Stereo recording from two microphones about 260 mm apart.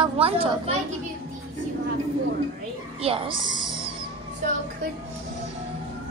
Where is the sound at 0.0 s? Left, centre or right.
Right.